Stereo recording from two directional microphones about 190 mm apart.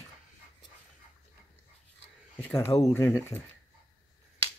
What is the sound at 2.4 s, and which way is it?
Speech, 10° left (ahead or behind).